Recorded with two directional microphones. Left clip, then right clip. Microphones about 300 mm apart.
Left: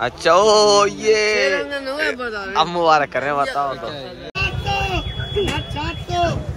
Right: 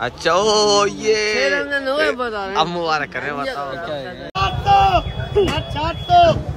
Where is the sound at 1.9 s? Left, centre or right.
Centre.